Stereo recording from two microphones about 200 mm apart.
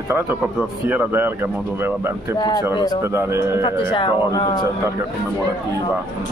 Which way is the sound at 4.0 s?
25° left (ahead or behind).